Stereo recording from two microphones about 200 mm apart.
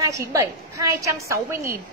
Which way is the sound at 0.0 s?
15° right (ahead or behind).